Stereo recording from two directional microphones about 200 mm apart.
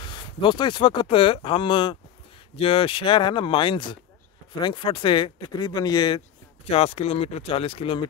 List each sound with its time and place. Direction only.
0.4 s speech: 20° left (ahead or behind)